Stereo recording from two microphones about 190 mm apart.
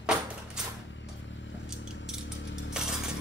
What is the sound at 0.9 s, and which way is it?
Music, 70° left (ahead or behind).